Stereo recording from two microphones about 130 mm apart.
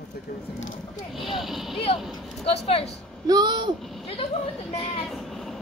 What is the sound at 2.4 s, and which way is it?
Speech, 50° left (ahead or behind).